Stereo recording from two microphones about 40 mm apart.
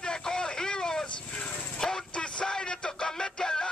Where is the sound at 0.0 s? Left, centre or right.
Centre.